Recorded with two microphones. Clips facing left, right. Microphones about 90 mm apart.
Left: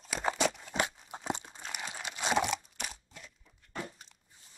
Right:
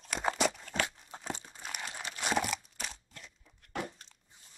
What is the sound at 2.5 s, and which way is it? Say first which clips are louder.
Crunch: left 2 dB; 5° left (ahead or behind).